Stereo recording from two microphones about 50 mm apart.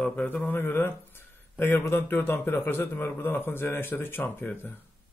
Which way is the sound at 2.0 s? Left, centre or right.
Left.